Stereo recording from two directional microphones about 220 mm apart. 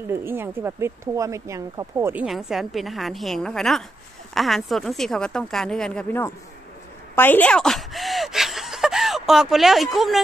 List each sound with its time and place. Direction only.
0.0 s speech: 10° right (ahead or behind); by 6.3 s 10° left (ahead or behind)
7.2 s chuckle: 10° left (ahead or behind)